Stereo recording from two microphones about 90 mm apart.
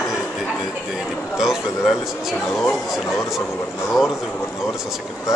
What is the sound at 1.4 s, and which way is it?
A man's voice, 5° right (ahead or behind).